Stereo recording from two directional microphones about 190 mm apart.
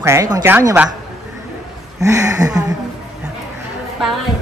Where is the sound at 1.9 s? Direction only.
15° right (ahead or behind).